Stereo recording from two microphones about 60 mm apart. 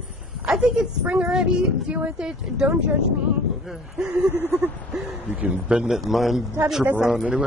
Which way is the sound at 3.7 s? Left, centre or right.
Centre.